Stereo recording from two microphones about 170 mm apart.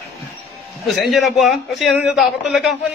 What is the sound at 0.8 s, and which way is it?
A man's voice, centre (ahead or behind).